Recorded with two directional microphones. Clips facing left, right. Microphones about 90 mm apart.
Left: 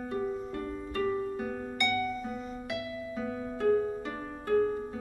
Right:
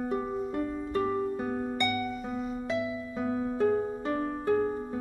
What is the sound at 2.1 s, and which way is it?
Music, 10° right (ahead or behind).